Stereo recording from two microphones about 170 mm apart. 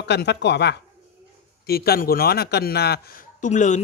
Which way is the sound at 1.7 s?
65° left (ahead or behind).